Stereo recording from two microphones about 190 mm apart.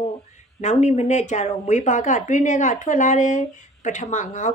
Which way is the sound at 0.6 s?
40° left (ahead or behind).